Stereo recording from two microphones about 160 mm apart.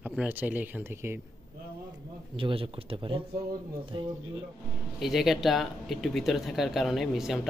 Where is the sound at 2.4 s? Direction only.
35° right (ahead or behind).